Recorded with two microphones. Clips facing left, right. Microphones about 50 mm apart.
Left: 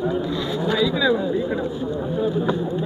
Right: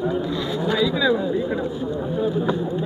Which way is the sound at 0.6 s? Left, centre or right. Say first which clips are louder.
Even; centre.